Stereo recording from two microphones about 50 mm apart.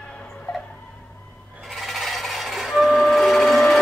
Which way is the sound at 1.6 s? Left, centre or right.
Centre.